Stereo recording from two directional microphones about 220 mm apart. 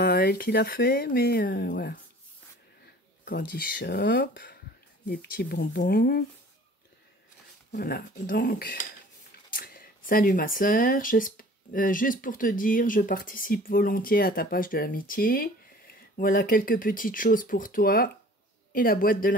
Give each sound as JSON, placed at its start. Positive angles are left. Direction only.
{"t": 0.0, "sound": "speech", "side_deg": 50}
{"t": 3.3, "sound": "speech", "side_deg": 45}
{"t": 7.7, "sound": "speech", "side_deg": 45}